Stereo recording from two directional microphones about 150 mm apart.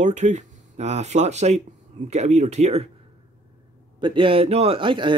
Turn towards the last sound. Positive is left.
turn(degrees=-35)  # may be behind; listen again after turning